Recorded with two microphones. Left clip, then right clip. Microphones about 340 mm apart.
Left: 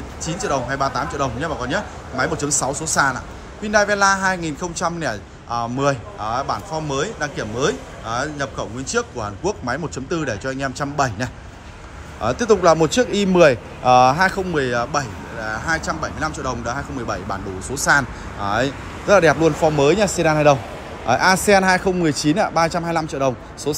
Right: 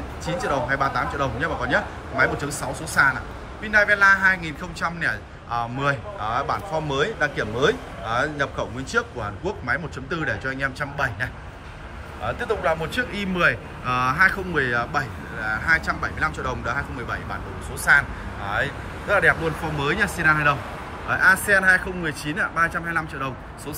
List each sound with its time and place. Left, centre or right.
0.2 s speech: centre
12.3 s speech: centre